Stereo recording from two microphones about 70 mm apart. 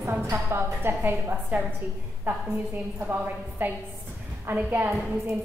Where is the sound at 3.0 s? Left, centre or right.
Right.